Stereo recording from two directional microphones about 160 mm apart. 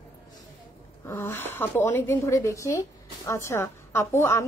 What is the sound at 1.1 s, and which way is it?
A woman's voice, 15° left (ahead or behind).